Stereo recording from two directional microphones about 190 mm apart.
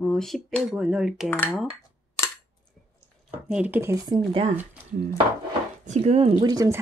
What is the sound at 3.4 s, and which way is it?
Speech, 5° right (ahead or behind).